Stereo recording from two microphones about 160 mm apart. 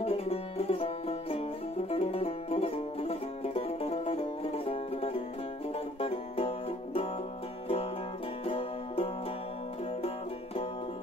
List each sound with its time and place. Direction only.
0.0 s music: 40° left (ahead or behind)
8.5 s music: 35° left (ahead or behind)